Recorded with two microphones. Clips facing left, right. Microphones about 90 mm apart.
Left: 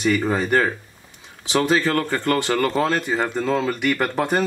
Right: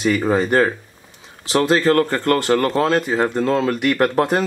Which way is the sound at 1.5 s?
40° right (ahead or behind).